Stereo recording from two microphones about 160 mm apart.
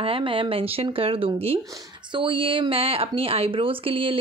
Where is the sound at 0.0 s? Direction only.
35° right (ahead or behind).